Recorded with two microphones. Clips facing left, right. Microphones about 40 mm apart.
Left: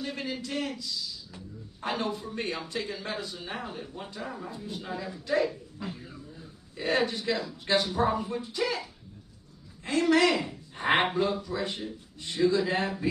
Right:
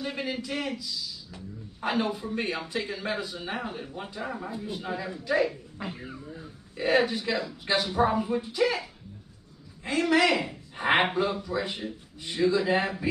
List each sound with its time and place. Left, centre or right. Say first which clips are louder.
0.1 s a man's voice: right 2 dB; centre
1.8 s a man's voice: right 3 dB; centre
5.8 s speech: right 2 dB; right
6.8 s a man's voice: right 3 dB; centre
9.8 s a man's voice: even; centre